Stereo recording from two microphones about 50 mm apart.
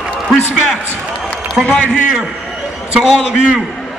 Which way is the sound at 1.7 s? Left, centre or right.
Left.